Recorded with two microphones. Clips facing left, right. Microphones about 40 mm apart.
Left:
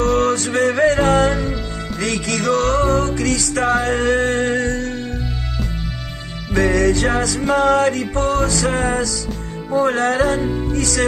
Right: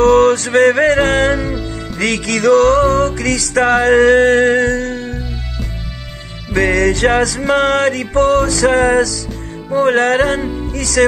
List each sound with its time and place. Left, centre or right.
0.2 s music: right
1.3 s music: centre
2.0 s music: right
6.5 s music: right
7.5 s music: right
8.1 s music: right
9.7 s music: right